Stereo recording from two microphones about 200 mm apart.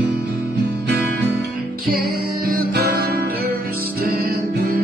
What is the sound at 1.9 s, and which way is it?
Music, 45° right (ahead or behind).